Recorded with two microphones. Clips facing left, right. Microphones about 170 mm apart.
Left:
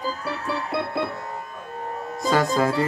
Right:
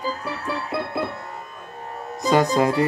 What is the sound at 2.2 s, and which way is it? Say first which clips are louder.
Music: right 3 dB; 20° right (ahead or behind).